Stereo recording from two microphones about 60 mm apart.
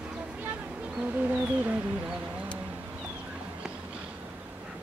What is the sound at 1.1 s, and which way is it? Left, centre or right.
Music, right.